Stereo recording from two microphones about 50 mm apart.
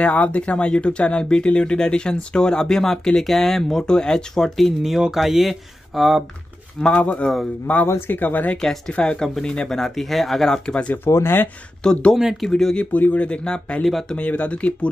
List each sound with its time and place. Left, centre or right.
0.0 s speech: left
4.6 s speech: centre
6.8 s speech: left
7.7 s speech: left
8.5 s speech: centre
8.9 s speech: left
10.6 s speech: left
11.1 s speech: left
11.8 s speech: centre
12.7 s speech: left